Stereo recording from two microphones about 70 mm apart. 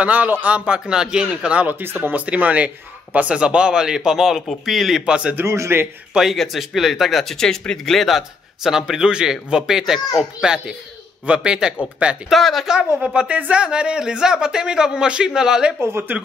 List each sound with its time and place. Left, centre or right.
0.0 s a man's voice: right; by 5.0 s centre
5.0 s a man's voice: centre
5.5 s a man's voice: right
6.3 s a man's voice: centre
12.3 s speech: centre
12.7 s a man's voice: centre
15.8 s a man's voice: right